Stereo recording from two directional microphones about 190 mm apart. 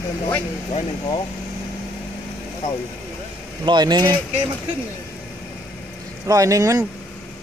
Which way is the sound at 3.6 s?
25° right (ahead or behind).